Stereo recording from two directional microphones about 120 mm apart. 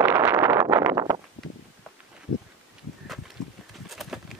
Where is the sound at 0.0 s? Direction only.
15° right (ahead or behind).